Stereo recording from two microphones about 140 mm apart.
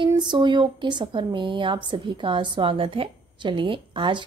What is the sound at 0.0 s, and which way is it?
Speech, 35° right (ahead or behind).